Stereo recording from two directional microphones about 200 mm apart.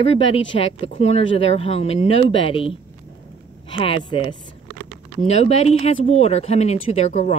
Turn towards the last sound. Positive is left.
turn(degrees=35)  # may be behind; listen again after turning